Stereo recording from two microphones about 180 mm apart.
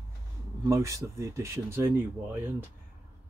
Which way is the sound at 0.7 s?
15° right (ahead or behind).